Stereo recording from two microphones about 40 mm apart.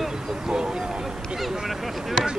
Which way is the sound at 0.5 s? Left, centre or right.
Right.